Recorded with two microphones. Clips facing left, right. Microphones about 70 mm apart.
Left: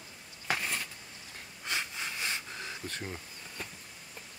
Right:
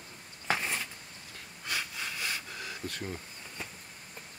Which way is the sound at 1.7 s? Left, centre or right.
Left.